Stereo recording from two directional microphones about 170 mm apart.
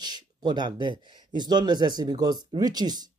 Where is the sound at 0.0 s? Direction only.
25° right (ahead or behind).